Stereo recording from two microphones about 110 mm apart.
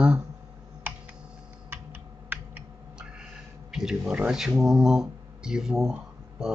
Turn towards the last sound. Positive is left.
turn(degrees=-5)  # may be behind; listen again after turning